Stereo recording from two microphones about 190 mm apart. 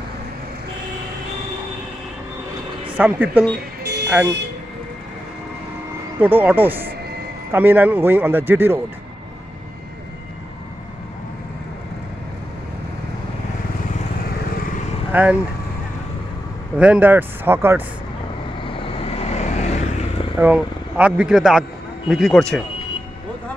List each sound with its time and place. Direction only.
3.0 s speech: 10° right (ahead or behind)
3.5 s music: 60° right (ahead or behind)
6.1 s speech: 10° right (ahead or behind)
15.1 s speech: 10° right (ahead or behind)
16.7 s speech: 5° right (ahead or behind)
18.6 s vehicle: 30° left (ahead or behind)
20.3 s speech: 5° right (ahead or behind)